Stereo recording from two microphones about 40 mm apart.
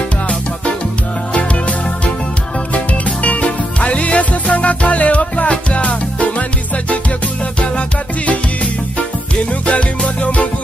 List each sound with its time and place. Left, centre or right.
1.3 s music: left
8.9 s music: left